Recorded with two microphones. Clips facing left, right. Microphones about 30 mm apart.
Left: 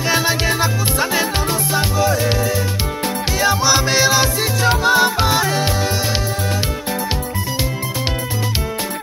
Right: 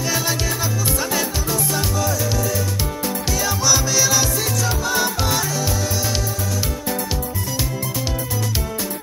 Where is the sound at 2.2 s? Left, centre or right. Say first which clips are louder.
Left 4 dB; left.